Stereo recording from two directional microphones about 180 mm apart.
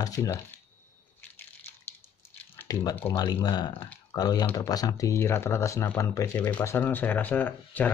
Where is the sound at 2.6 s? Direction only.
15° left (ahead or behind).